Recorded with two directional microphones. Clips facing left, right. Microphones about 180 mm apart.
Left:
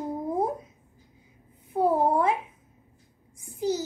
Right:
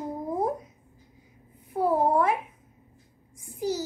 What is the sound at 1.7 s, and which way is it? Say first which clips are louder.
Speech: even; 25° left (ahead or behind).